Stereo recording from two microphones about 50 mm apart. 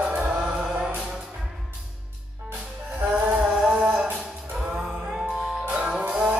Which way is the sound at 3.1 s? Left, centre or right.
Centre.